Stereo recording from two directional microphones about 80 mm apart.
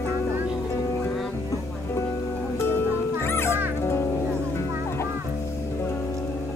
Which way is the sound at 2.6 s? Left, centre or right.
Left.